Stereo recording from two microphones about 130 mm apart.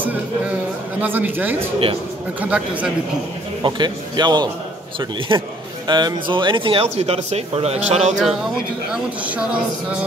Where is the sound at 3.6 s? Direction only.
35° right (ahead or behind).